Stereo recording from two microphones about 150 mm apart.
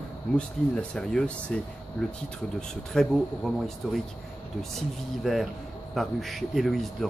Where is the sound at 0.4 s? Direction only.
5° left (ahead or behind).